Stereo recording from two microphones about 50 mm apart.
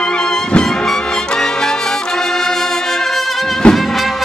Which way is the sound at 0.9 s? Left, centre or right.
Centre.